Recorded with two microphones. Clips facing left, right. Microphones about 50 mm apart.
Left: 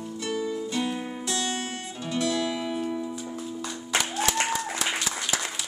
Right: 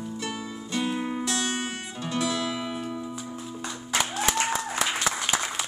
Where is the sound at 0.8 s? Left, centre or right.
Right.